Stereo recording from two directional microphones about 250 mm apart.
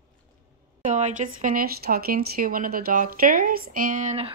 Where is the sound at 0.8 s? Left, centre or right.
Right.